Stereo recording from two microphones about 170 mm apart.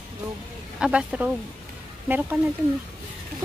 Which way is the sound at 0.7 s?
5° right (ahead or behind).